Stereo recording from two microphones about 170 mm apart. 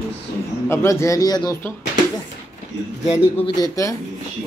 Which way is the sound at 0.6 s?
15° left (ahead or behind).